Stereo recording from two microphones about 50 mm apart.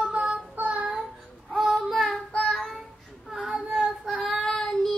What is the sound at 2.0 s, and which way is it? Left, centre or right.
Child singing, centre.